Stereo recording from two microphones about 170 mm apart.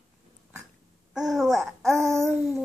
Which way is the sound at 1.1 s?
Centre (ahead or behind).